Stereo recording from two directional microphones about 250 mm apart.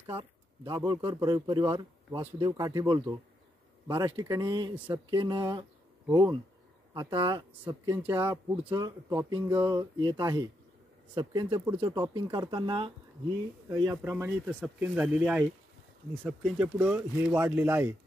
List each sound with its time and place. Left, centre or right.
0.2 s speech: centre